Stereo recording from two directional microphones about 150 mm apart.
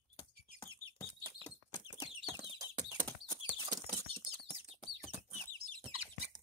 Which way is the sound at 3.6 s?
30° right (ahead or behind).